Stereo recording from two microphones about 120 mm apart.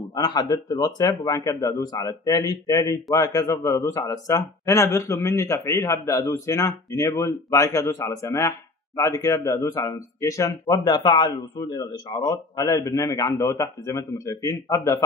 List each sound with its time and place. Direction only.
0.1 s speech: 35° left (ahead or behind)